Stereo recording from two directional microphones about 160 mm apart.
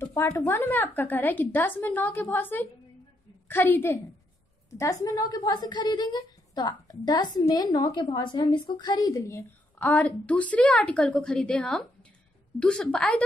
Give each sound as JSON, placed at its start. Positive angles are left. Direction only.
{"t": 0.0, "sound": "a woman's voice", "side_deg": 15}
{"t": 5.0, "sound": "a woman's voice", "side_deg": 25}